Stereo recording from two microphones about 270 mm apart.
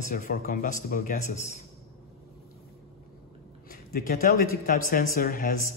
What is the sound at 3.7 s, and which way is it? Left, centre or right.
Speech, left.